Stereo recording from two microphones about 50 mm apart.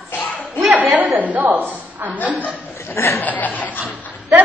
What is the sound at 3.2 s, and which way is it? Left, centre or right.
Chuckle, left.